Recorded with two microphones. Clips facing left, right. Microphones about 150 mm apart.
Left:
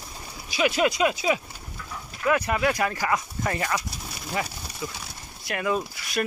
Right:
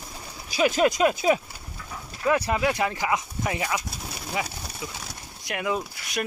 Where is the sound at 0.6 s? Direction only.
40° right (ahead or behind).